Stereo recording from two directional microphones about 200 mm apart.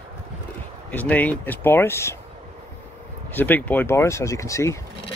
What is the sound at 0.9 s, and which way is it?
Speech, 10° left (ahead or behind).